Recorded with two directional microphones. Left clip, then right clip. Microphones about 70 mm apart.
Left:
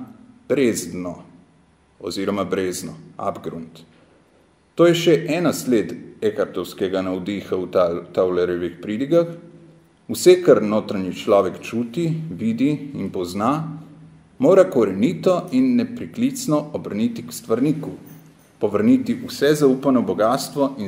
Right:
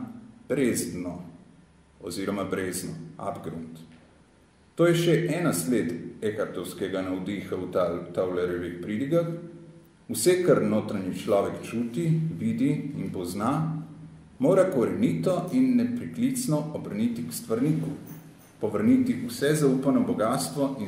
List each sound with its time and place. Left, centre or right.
0.5 s a man's voice: left